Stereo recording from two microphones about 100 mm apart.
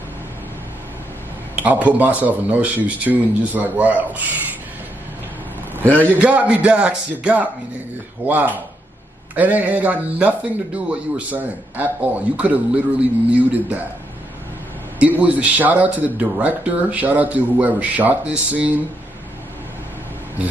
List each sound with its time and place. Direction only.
1.5 s a man's voice: 15° right (ahead or behind)
6.1 s a man's voice: 10° right (ahead or behind)
15.0 s a man's voice: 15° right (ahead or behind)